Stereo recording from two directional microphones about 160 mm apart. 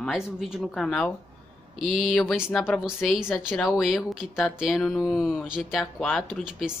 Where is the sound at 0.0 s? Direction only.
Centre (ahead or behind).